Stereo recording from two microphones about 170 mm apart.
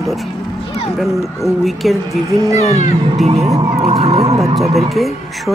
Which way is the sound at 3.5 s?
25° right (ahead or behind).